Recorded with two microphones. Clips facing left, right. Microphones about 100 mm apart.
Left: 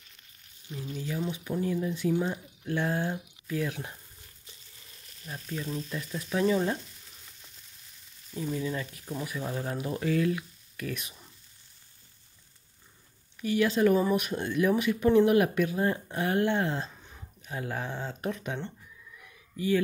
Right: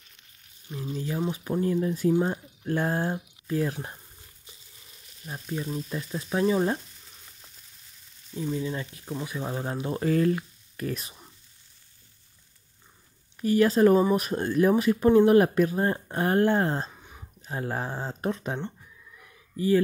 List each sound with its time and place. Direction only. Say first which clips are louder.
1.0 s speech: right 3 dB; 40° right (ahead or behind)
5.2 s speech: right 3 dB; 25° right (ahead or behind)
8.5 s speech: right 1 dB; 25° right (ahead or behind)
13.4 s speech: right 5 dB; 40° right (ahead or behind)